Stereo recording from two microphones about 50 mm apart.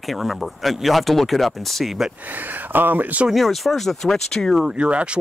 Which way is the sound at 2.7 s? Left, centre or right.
Right.